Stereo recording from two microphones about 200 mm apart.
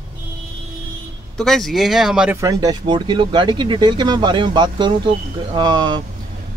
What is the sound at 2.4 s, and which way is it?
Speech, 15° right (ahead or behind).